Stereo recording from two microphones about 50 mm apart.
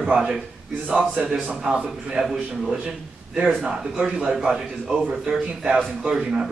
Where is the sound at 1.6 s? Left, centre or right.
Centre.